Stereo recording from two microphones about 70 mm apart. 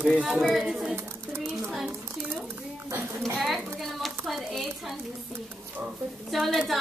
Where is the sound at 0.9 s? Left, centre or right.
Right.